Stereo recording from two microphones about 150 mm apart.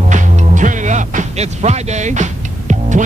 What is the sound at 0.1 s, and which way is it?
Music, 55° right (ahead or behind).